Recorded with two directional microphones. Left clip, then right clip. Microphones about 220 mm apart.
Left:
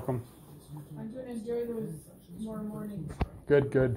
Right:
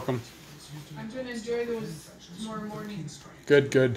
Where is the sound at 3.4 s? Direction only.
25° right (ahead or behind).